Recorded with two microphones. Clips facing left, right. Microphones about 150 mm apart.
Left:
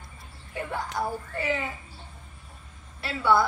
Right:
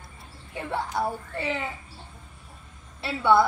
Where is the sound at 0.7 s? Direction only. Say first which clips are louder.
Right 3 dB; 25° right (ahead or behind).